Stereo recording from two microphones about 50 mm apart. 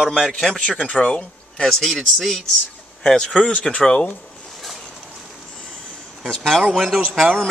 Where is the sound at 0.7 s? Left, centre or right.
Left.